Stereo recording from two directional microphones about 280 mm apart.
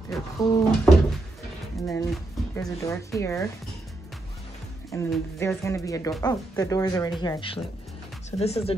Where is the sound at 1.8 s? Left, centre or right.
Centre.